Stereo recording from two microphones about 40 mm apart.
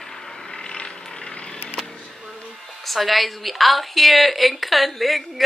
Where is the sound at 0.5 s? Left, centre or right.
Left.